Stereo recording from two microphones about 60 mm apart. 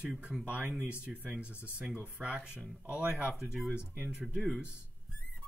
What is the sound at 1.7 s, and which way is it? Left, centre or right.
Speech, centre.